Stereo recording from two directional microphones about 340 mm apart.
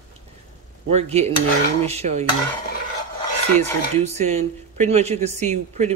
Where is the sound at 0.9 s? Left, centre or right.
Centre.